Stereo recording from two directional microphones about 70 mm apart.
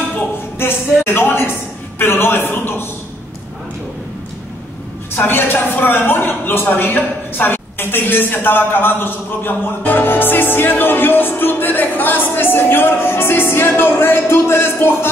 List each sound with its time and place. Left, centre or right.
0.6 s a woman's voice: left
5.1 s a woman's voice: left